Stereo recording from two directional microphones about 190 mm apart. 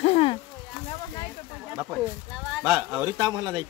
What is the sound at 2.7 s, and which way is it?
Speech, 10° right (ahead or behind).